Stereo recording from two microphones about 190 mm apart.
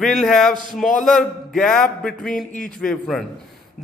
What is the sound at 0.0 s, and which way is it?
Speech, 5° left (ahead or behind).